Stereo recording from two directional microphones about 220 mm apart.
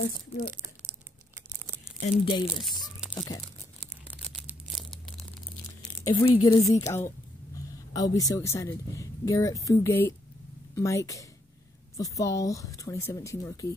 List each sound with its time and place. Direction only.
2.0 s speech: 20° left (ahead or behind)
2.8 s tearing: centre (ahead or behind)
4.5 s tearing: centre (ahead or behind)
5.8 s crumpling: 20° left (ahead or behind)
6.4 s speech: 15° left (ahead or behind)